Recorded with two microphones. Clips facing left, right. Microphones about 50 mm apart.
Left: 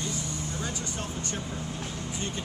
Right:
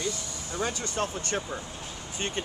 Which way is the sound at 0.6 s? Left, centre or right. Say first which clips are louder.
Right 5 dB; right.